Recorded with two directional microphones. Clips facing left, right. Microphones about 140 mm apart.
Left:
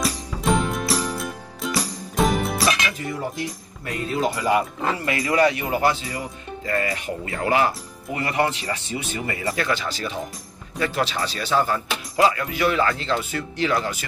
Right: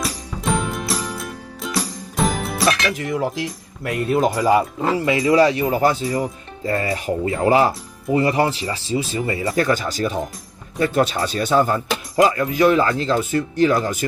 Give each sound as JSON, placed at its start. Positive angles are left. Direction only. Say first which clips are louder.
{"t": 0.0, "sound": "music", "louder": "left 1 dB", "side_deg": 0}
{"t": 3.1, "sound": "cutlery", "louder": "right 6 dB", "side_deg": -90}
{"t": 4.4, "sound": "speech", "louder": "right 4 dB", "side_deg": -25}
{"t": 6.6, "sound": "speech", "louder": "right 3 dB", "side_deg": -25}
{"t": 9.6, "sound": "speech", "louder": "right 9 dB", "side_deg": -45}